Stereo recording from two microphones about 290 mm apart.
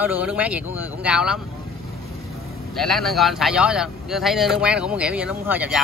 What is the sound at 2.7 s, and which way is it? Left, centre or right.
Speech, centre.